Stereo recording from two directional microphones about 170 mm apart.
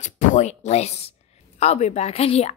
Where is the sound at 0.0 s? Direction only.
45° left (ahead or behind).